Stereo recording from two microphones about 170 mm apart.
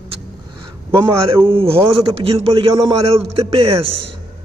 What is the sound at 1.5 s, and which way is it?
A man's voice, 35° right (ahead or behind).